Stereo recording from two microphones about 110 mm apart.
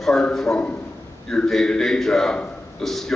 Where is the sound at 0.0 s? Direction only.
5° left (ahead or behind).